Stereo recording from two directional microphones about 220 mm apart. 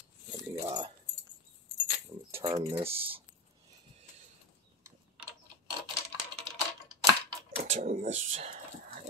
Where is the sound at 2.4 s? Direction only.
25° right (ahead or behind).